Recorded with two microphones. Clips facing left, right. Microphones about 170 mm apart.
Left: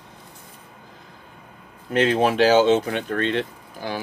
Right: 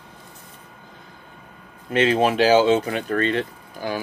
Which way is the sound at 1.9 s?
5° right (ahead or behind).